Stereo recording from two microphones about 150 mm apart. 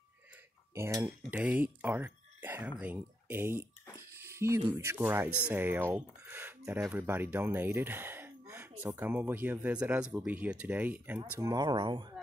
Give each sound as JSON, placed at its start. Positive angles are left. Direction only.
{"t": 0.7, "sound": "speech", "side_deg": -20}
{"t": 11.1, "sound": "speech", "side_deg": -25}